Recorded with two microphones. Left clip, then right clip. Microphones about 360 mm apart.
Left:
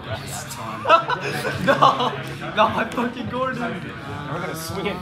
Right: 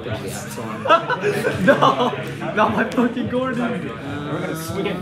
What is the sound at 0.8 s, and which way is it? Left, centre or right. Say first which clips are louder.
A man's voice: right 1 dB; left.